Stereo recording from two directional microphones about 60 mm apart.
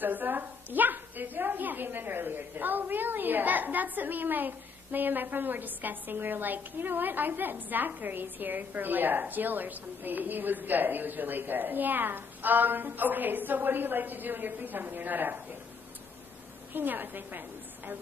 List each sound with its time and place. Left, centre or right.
0.0 s a woman's voice: right
16.7 s a woman's voice: right